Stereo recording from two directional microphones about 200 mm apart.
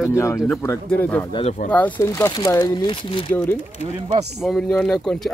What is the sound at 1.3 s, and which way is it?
Speech, 35° left (ahead or behind).